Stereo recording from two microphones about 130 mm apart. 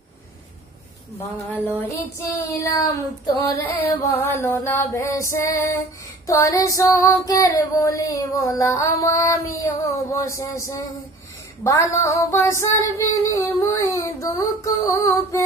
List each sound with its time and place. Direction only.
1.6 s child singing: 15° left (ahead or behind)
3.6 s child singing: 15° left (ahead or behind)